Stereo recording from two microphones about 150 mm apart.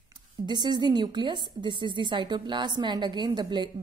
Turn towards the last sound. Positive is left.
turn(degrees=-30)  # may be behind; listen again after turning